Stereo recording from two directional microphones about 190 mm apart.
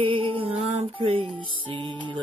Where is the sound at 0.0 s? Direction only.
30° right (ahead or behind).